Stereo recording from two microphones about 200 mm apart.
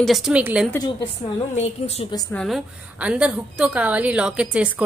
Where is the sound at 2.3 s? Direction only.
Centre (ahead or behind).